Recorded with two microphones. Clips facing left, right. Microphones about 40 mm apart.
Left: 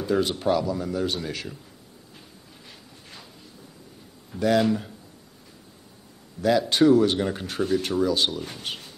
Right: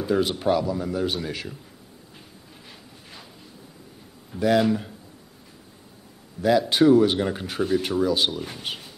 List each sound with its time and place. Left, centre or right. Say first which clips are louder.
0.0 s speech: right 1 dB; centre
4.3 s speech: right 1 dB; centre
6.4 s speech: right 1 dB; centre